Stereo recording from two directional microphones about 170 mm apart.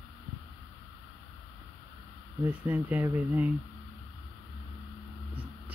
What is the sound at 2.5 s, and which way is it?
Speech, 10° right (ahead or behind).